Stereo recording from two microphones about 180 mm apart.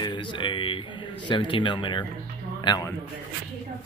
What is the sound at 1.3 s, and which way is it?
A man's voice, 25° left (ahead or behind).